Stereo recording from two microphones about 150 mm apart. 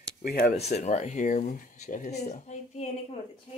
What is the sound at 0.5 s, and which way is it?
Speech, 50° left (ahead or behind).